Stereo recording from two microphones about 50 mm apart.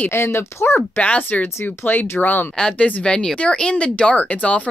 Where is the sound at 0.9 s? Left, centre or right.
Left.